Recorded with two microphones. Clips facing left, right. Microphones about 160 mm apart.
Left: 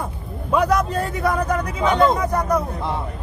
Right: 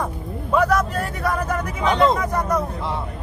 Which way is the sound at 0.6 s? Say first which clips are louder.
Even; 20° left (ahead or behind).